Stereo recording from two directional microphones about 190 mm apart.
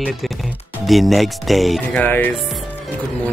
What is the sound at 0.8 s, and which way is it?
Speech, centre (ahead or behind).